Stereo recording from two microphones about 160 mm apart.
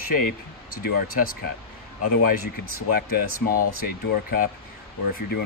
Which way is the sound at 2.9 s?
70° left (ahead or behind).